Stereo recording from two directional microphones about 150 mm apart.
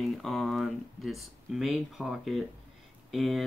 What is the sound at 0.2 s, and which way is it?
Speech, centre (ahead or behind).